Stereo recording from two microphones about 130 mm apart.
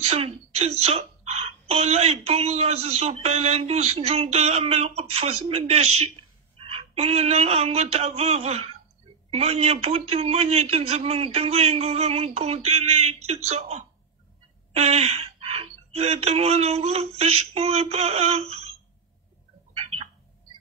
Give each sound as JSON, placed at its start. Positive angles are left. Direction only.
{"t": 0.0, "sound": "speech", "side_deg": -55}
{"t": 19.7, "sound": "bird", "side_deg": -50}